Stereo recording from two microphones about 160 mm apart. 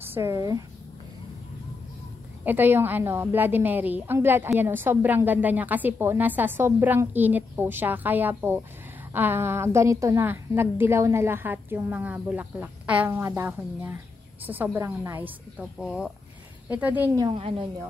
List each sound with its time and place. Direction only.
0.0 s speech: 15° right (ahead or behind)
2.4 s a woman's voice: 15° right (ahead or behind)
17.2 s a woman's voice: 35° right (ahead or behind)